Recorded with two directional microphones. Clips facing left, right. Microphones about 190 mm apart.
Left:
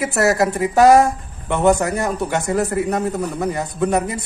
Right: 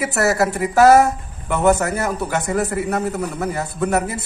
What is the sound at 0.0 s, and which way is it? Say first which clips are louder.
A woman's voice: left 1 dB; centre (ahead or behind).